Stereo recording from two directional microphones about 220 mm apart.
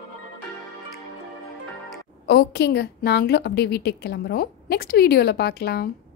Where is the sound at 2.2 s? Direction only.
50° left (ahead or behind).